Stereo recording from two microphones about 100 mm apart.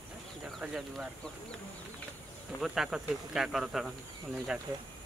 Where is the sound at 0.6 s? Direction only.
5° right (ahead or behind).